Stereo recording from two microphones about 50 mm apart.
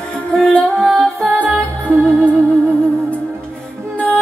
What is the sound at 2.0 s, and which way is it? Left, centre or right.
Music, left.